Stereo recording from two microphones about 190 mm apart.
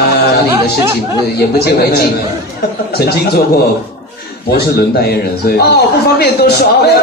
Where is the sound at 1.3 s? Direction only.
55° left (ahead or behind).